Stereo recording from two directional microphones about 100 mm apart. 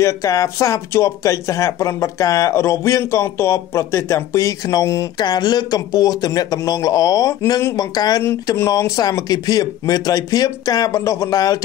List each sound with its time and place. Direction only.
0.0 s speech: 35° left (ahead or behind)
5.2 s speech: 45° left (ahead or behind)